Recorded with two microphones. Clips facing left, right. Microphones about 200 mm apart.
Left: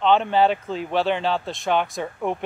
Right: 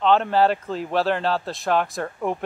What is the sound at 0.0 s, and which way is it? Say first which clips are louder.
Speech: even; centre (ahead or behind).